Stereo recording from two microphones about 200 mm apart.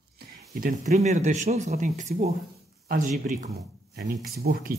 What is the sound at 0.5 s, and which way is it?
Speech, 40° right (ahead or behind).